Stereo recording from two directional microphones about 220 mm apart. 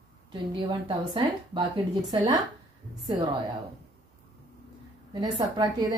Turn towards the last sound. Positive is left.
turn(degrees=-20)  # may be behind; listen again after turning